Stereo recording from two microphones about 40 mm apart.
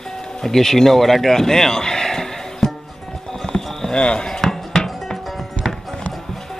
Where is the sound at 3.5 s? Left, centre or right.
Centre.